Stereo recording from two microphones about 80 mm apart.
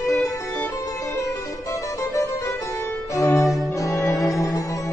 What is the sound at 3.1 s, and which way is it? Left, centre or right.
Cello, left.